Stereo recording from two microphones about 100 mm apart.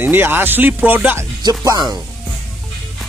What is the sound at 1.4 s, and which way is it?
Speech, 35° right (ahead or behind).